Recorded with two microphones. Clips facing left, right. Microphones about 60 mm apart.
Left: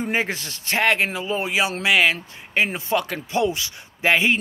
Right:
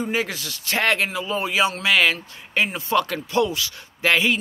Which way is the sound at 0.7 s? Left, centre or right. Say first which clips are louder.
Left 1 dB; left.